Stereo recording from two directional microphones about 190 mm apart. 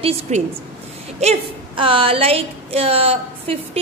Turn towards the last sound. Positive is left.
turn(degrees=-30)  # may be behind; listen again after turning